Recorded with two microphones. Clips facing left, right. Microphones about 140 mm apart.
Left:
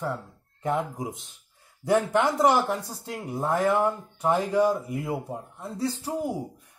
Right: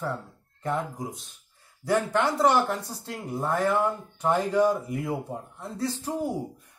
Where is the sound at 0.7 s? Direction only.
15° left (ahead or behind).